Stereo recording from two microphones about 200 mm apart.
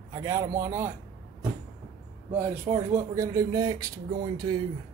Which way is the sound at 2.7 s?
15° right (ahead or behind).